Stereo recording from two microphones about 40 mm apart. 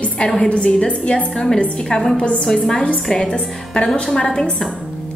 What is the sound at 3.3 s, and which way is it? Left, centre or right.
Speech, left.